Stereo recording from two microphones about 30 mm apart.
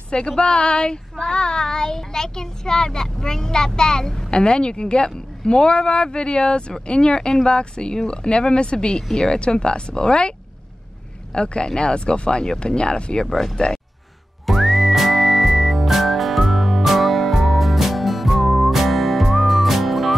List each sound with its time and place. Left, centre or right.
0.4 s child singing: left
4.3 s speech: left
6.9 s child singing: left
8.1 s speech: left
11.3 s speech: left
13.3 s speech: centre
14.4 s whistling: centre
18.4 s music: centre